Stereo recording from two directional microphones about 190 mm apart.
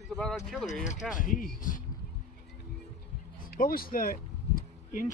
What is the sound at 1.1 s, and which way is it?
Speech, 45° left (ahead or behind).